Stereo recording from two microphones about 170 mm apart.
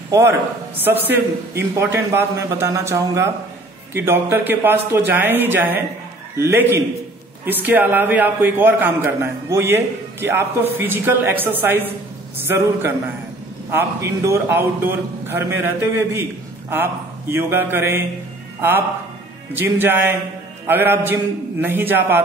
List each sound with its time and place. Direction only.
0.1 s a man's voice: 15° right (ahead or behind)